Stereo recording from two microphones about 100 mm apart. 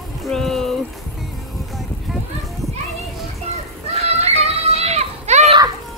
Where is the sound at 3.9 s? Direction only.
90° right.